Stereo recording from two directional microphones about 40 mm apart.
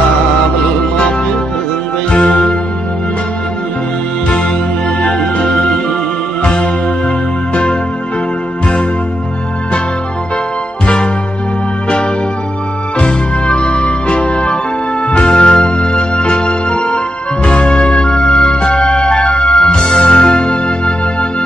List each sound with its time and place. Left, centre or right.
2.0 s music: centre
5.5 s music: centre
6.4 s music: left
13.5 s music: left
19.8 s music: centre
20.1 s music: left